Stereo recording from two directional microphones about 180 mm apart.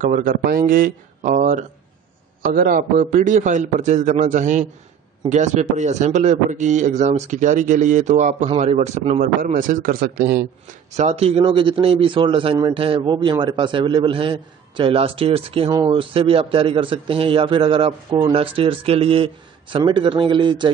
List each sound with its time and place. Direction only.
0.0 s a man's voice: 45° right (ahead or behind)
10.9 s a man's voice: 40° right (ahead or behind)